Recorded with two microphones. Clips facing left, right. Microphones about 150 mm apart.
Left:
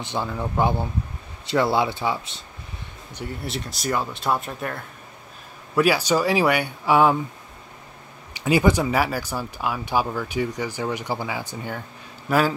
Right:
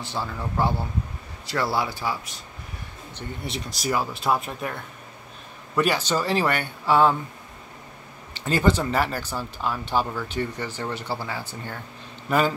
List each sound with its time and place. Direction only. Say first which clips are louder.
0.0 s speech: left 3 dB; 20° left (ahead or behind)
3.2 s speech: left 2 dB; 5° left (ahead or behind)
8.3 s speech: left 3 dB; 10° left (ahead or behind)